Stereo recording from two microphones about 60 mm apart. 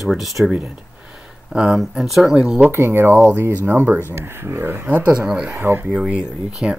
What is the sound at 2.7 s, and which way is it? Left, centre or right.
Speech, right.